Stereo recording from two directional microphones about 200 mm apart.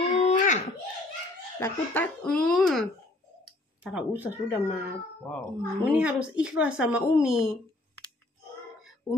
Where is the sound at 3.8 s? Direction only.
5° right (ahead or behind).